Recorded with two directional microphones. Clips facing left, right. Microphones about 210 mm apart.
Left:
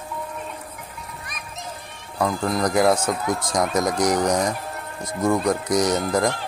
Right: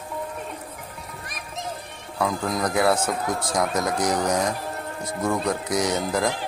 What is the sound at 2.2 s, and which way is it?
Speech, centre (ahead or behind).